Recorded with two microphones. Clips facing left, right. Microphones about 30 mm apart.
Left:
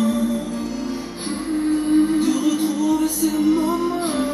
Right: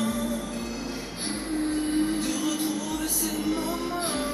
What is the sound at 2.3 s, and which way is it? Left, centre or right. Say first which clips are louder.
Music: left 8 dB; left.